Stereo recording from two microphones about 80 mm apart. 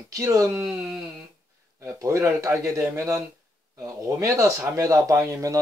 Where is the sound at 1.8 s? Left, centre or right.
Right.